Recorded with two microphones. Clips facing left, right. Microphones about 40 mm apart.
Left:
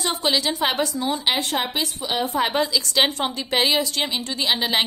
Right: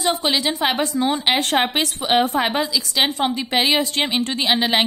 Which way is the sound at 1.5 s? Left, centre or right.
Right.